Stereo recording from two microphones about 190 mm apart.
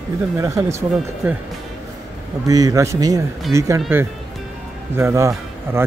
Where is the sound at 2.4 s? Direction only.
20° right (ahead or behind).